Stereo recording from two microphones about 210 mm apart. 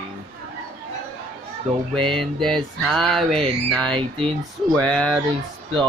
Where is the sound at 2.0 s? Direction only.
Centre (ahead or behind).